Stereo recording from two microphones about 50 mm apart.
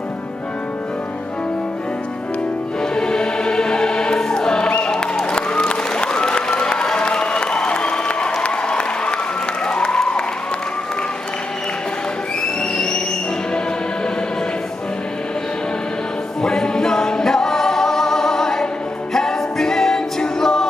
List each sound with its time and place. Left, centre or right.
3.0 s choir: centre
4.9 s applause: centre
16.4 s a capella: centre